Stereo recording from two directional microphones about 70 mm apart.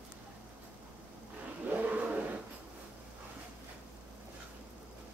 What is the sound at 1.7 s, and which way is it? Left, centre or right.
Vehicle, right.